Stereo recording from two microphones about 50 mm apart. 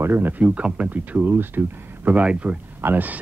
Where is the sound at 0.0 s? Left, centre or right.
Right.